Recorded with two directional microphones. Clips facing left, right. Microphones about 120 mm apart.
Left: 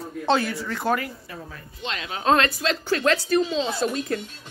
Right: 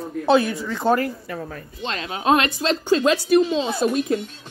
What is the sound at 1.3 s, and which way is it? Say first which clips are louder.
Speech: right 7 dB; 55° right (ahead or behind).